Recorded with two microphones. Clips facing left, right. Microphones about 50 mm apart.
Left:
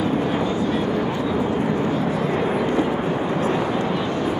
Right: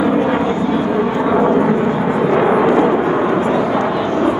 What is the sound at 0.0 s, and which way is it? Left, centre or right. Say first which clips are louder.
Vehicle: right 7 dB; right.